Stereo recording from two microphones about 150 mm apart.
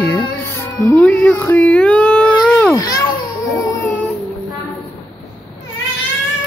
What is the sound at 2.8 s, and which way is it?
Speech, 25° left (ahead or behind).